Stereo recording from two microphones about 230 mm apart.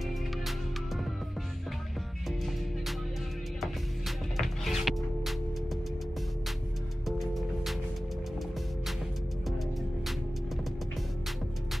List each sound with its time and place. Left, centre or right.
4.4 s music: centre
7.1 s music: centre